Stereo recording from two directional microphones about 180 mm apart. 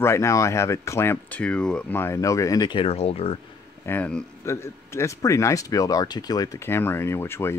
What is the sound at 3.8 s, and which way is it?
Speech, 10° left (ahead or behind).